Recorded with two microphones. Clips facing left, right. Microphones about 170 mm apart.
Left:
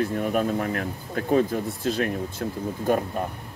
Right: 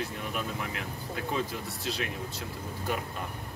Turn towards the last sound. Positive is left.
turn(degrees=50)  # may be behind; listen again after turning